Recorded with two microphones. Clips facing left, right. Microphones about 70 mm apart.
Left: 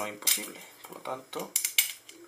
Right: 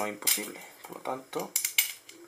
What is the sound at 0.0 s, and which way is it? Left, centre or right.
Speech, centre.